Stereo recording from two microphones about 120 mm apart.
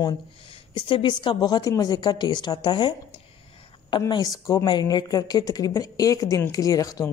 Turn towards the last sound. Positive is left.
turn(degrees=30)  # may be behind; listen again after turning